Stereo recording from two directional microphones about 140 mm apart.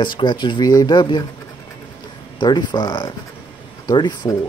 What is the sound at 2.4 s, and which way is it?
Speech, 35° left (ahead or behind).